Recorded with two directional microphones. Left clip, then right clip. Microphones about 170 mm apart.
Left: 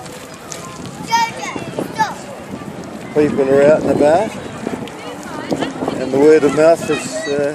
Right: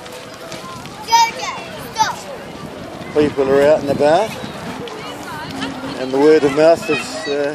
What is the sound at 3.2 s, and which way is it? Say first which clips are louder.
Speech: left 1 dB; 5° right (ahead or behind).